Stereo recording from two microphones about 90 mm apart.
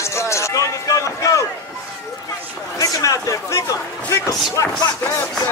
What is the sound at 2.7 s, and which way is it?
A man's voice, 40° left (ahead or behind).